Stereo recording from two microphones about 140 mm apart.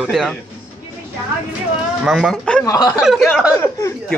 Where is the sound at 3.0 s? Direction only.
Centre (ahead or behind).